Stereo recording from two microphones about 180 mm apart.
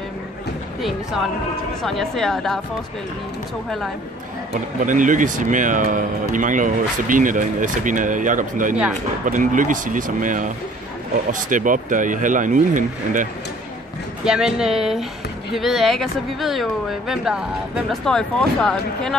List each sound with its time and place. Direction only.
0.7 s speech: centre (ahead or behind)
4.7 s speech: 45° right (ahead or behind)
14.2 s speech: 5° right (ahead or behind)